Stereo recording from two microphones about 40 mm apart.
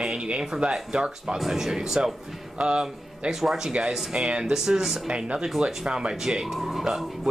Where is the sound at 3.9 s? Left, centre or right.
Right.